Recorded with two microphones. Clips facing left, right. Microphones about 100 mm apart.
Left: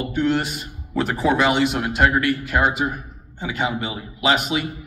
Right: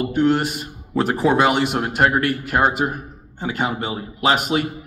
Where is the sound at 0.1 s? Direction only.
45° right (ahead or behind).